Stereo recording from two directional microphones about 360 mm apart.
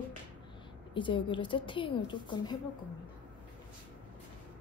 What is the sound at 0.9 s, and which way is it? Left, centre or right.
A woman's voice, centre.